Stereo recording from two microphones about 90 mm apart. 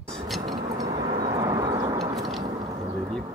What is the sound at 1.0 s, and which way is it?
Vehicle, 85° right.